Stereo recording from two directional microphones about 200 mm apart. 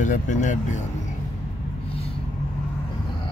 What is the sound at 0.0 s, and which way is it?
Speech, 40° left (ahead or behind).